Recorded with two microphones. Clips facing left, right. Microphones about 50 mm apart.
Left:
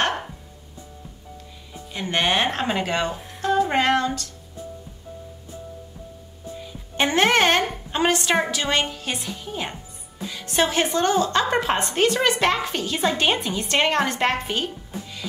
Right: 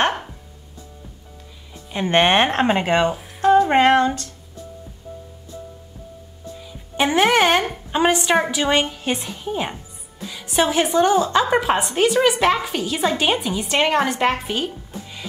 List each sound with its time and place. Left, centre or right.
1.9 s speech: right
7.0 s a woman's voice: centre
10.3 s a woman's voice: centre